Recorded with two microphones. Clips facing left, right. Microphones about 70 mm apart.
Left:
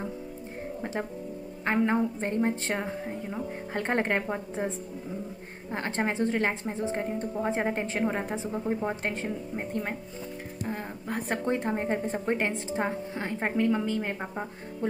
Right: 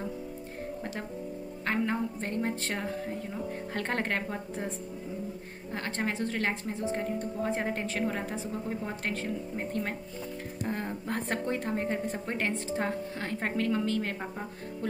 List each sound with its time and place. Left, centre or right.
1.7 s a woman's voice: left
11.4 s a woman's voice: left